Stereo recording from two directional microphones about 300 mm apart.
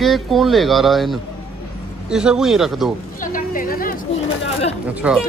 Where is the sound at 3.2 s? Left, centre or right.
Left.